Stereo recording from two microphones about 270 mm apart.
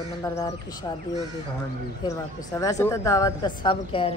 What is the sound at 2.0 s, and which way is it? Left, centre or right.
Speech, centre.